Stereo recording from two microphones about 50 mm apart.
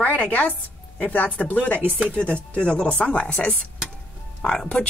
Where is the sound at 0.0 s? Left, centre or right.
Left.